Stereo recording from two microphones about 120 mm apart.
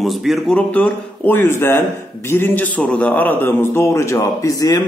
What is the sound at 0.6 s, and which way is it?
A man's voice, 10° left (ahead or behind).